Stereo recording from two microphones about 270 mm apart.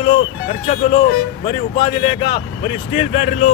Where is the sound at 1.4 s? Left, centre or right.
Left.